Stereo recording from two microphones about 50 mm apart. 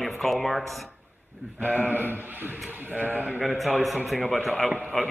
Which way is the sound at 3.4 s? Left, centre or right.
Centre.